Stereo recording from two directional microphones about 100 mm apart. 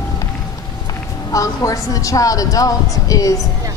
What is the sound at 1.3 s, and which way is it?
A woman's voice, 35° left (ahead or behind).